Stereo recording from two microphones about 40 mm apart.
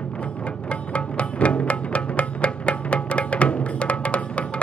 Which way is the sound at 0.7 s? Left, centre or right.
Left.